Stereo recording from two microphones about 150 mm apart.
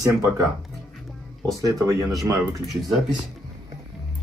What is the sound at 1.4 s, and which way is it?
Speech, 20° right (ahead or behind).